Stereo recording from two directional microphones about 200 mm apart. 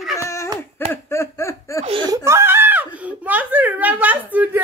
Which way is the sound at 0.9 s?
15° left (ahead or behind).